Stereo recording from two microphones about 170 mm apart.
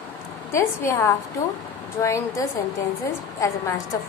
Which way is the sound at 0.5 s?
15° left (ahead or behind).